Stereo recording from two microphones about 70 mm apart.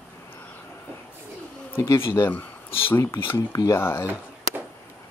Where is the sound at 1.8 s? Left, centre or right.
Left.